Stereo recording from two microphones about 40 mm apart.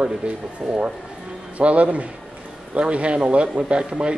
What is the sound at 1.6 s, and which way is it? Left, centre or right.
Speech, right.